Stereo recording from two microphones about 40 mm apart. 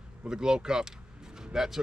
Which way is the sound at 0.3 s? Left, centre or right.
Centre.